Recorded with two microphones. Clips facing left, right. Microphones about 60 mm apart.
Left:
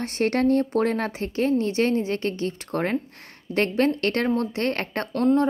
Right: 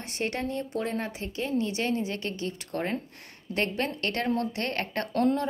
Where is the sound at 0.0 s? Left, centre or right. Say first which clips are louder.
Left 9 dB; left.